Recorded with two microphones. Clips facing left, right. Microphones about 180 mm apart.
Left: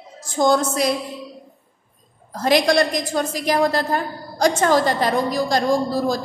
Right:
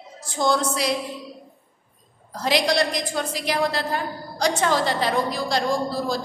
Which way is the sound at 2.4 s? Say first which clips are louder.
Left 5 dB; 50° left (ahead or behind).